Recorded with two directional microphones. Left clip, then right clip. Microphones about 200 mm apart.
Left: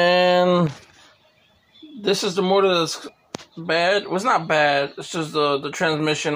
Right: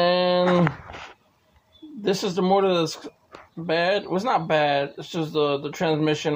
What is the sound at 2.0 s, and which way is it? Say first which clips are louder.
Speech: left 3 dB; 5° right (ahead or behind).